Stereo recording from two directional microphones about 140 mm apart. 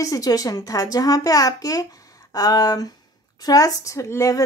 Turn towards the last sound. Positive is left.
turn(degrees=20)  # may be behind; listen again after turning